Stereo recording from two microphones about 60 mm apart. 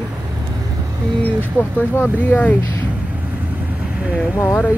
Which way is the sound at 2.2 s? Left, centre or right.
Left.